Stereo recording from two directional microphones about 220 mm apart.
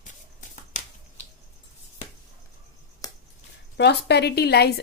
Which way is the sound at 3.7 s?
50° left (ahead or behind).